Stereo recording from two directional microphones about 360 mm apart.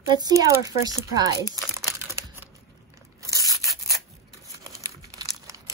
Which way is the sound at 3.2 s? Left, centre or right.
Centre.